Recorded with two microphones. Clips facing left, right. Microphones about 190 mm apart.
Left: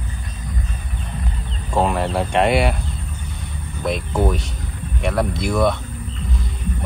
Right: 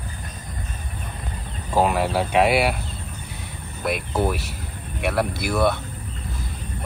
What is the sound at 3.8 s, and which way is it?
Speech, 5° right (ahead or behind).